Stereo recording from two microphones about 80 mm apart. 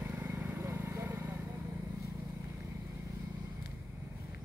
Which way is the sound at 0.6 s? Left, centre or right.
Right.